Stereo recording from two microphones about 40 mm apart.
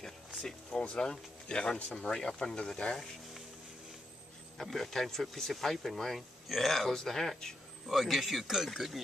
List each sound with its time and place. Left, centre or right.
0.7 s speech: left
4.6 s speech: centre
7.9 s speech: centre